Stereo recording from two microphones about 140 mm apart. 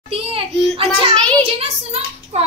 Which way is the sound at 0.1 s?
40° right (ahead or behind).